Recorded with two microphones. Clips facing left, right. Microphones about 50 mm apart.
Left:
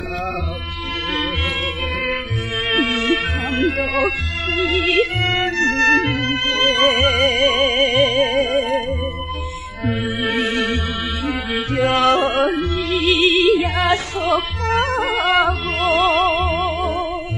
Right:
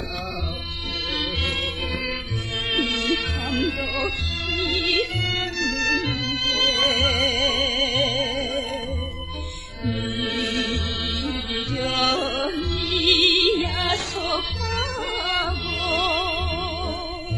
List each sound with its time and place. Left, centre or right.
2.7 s music: left
9.8 s mantra: left
11.2 s music: left
13.0 s music: left
13.6 s music: left